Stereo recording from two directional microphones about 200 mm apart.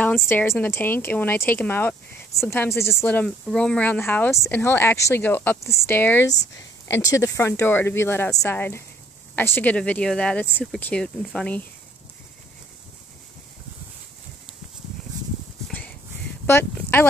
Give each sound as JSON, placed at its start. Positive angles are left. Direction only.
{"t": 0.0, "sound": "speech", "side_deg": 10}
{"t": 16.4, "sound": "speech", "side_deg": 10}